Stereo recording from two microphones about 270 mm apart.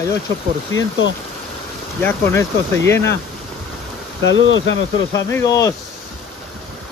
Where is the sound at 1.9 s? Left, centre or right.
Centre.